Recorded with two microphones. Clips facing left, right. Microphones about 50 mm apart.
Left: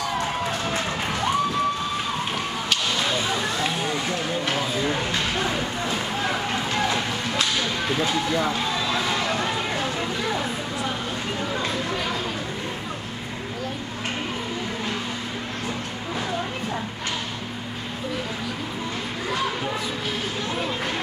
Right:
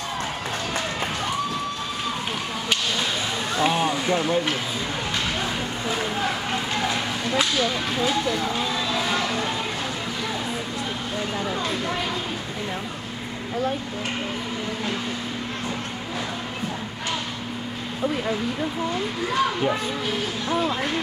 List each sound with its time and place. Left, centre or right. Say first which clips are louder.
3.5 s vehicle: right 4 dB; right